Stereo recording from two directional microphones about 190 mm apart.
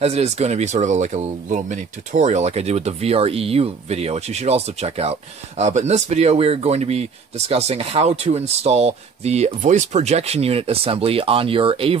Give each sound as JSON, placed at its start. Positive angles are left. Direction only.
{"t": 0.0, "sound": "speech", "side_deg": -35}